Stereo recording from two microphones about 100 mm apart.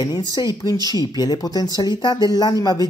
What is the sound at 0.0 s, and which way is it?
Speech, 40° left (ahead or behind).